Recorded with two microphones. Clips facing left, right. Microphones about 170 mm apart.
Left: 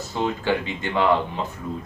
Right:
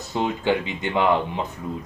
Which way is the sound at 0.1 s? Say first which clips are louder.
Right 1 dB; 15° right (ahead or behind).